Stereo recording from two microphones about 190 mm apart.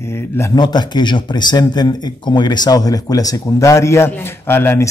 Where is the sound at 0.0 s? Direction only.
10° left (ahead or behind).